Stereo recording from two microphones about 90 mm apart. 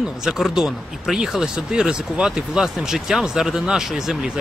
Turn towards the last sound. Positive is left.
turn(degrees=-5)  # may be behind; listen again after turning